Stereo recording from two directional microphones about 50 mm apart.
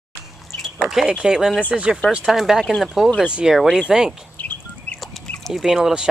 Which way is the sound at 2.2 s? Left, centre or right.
Centre.